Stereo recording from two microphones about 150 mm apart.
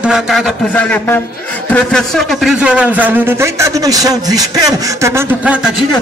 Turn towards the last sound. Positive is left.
turn(degrees=-20)  # may be behind; listen again after turning